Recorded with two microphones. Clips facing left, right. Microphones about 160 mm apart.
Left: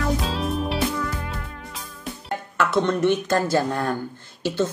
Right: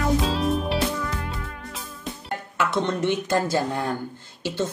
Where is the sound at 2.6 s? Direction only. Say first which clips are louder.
Left 3 dB; 20° right (ahead or behind).